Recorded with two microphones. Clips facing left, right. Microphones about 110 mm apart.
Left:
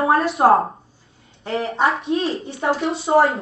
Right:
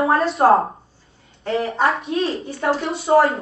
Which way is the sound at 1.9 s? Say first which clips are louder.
Even; centre (ahead or behind).